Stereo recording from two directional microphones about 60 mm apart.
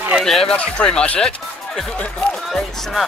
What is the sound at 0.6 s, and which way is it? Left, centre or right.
Speech, centre.